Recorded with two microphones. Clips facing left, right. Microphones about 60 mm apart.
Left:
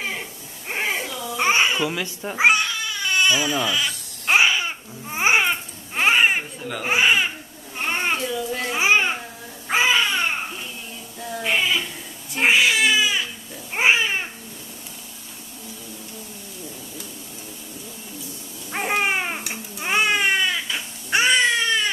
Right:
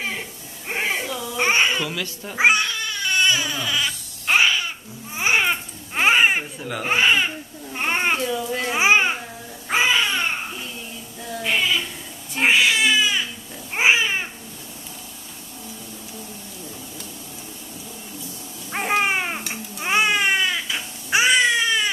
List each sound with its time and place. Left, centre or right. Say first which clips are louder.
0.7 s a sound: right 1 dB; centre
1.3 s babbling: even; centre
1.9 s speech: left 2 dB; centre
2.3 s speech: even; centre
4.3 s babbling: left 1 dB; centre
5.4 s baby cry: even; centre
6.9 s speech: even; centre
7.7 s cat: right 2 dB; centre
8.5 s babbling: right 2 dB; centre
9.7 s babbling: even; centre
11.1 s bleat: even; centre
12.4 s baby cry: even; centre
13.7 s babbling: even; centre
18.7 s baby cry: right 1 dB; centre